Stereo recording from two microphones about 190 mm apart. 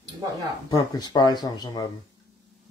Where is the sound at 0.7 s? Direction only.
20° left (ahead or behind).